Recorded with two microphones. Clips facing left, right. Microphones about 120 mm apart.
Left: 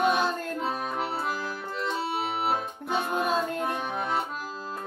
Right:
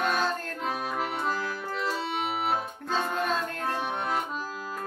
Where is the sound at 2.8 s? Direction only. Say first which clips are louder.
Left 2 dB; 15° left (ahead or behind).